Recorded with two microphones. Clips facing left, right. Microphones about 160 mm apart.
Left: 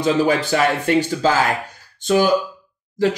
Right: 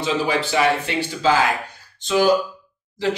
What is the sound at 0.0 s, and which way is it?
Speech, 45° left (ahead or behind).